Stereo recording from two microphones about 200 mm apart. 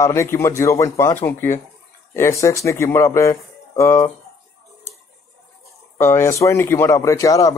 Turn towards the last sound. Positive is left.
turn(degrees=15)  # may be behind; listen again after turning